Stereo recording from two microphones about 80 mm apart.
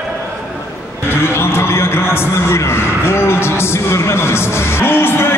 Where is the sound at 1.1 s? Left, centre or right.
Left.